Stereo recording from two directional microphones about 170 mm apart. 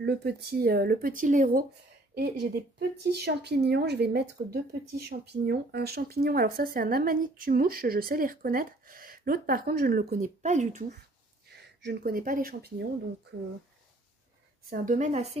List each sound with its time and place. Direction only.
0.0 s speech: 70° right (ahead or behind); by 1.6 s 50° right (ahead or behind)
2.1 s speech: 70° right (ahead or behind)
4.4 s speech: 60° right (ahead or behind)
5.5 s speech: 70° right (ahead or behind); by 10.9 s 45° right (ahead or behind)
11.5 s speech: 75° right (ahead or behind)
14.7 s a woman's voice: 50° right (ahead or behind)